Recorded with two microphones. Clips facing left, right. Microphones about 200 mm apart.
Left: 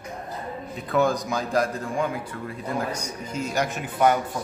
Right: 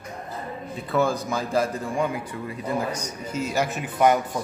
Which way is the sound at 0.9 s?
Centre (ahead or behind).